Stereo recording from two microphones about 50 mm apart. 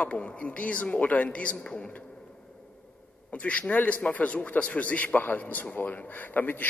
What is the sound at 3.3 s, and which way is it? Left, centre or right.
A man's voice, left.